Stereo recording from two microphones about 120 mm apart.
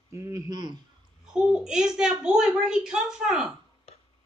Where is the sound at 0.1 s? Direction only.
25° right (ahead or behind).